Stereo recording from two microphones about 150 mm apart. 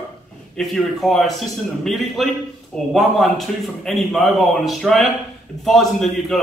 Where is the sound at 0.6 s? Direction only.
Centre (ahead or behind).